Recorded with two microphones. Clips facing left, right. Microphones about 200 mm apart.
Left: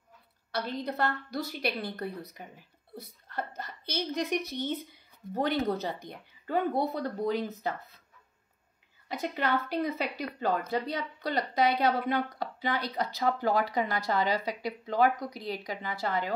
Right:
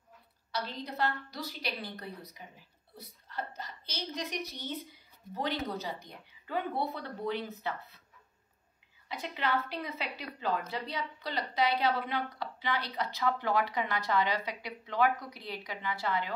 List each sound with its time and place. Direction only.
0.5 s a woman's voice: 55° left (ahead or behind)
9.1 s speech: 45° left (ahead or behind)